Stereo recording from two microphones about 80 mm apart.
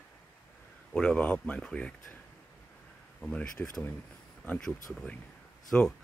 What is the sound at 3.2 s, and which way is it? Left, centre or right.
Speech, centre.